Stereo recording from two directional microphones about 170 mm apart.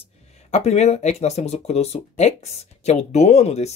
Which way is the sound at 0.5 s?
40° left (ahead or behind).